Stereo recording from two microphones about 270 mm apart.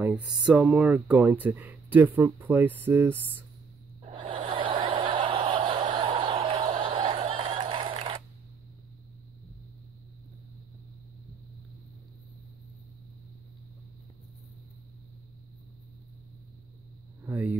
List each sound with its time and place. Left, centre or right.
0.0 s speech: centre
4.0 s snicker: centre
17.3 s a sound: centre